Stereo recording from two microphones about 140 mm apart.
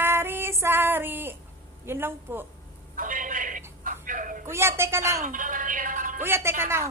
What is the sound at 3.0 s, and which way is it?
Telephone, 75° right (ahead or behind).